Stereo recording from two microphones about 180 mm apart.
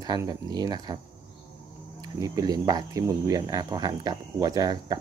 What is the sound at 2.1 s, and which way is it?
Speech, 20° right (ahead or behind).